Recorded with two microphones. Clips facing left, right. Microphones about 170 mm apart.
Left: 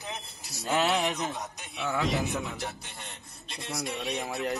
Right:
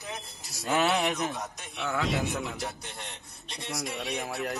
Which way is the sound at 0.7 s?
20° left (ahead or behind).